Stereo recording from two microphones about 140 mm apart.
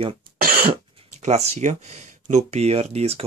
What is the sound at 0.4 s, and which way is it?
Cough, 90° right.